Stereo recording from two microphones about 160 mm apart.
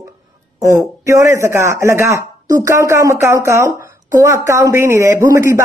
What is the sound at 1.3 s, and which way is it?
A man's voice, 15° right (ahead or behind).